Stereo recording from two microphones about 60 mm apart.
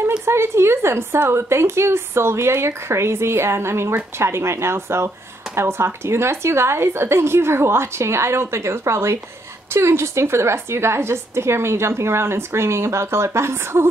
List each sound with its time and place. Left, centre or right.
0.2 s a woman's voice: right